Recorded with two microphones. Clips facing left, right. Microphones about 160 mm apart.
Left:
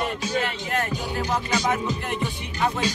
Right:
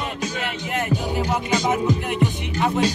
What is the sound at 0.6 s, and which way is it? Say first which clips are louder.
Music: right 3 dB; 15° right (ahead or behind).